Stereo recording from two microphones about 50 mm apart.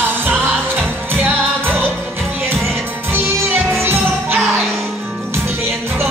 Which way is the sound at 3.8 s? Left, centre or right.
Right.